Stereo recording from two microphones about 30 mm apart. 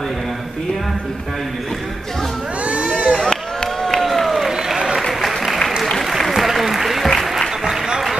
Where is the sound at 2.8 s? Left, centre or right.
Left.